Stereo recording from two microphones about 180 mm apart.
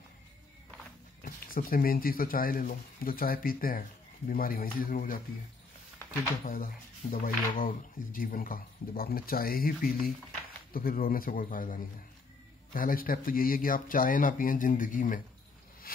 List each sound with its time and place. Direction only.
1.2 s speech: 50° left (ahead or behind)
6.4 s speech: 50° left (ahead or behind)